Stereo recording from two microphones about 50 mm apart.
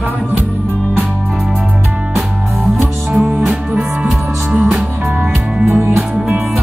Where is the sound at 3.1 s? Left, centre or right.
Centre.